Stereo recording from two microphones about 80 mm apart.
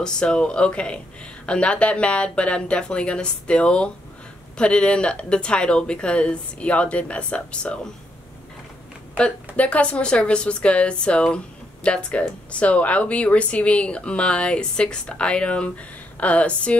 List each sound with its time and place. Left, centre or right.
0.0 s speech: centre
9.1 s speech: centre